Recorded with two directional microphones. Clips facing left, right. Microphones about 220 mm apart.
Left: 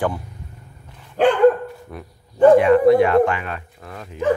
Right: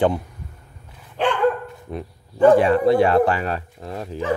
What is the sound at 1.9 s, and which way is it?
Speech, 25° right (ahead or behind).